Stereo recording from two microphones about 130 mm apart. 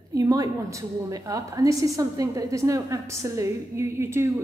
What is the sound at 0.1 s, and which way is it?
A woman's voice, 25° right (ahead or behind).